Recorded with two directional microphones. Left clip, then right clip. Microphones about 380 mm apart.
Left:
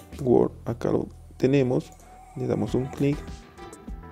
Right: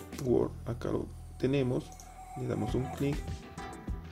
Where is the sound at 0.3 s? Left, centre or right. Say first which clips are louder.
Left 9 dB; left.